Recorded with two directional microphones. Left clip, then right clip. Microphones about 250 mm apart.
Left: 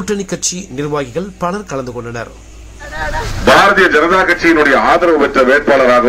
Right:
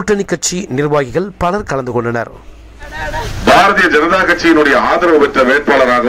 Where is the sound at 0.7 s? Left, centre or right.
Right.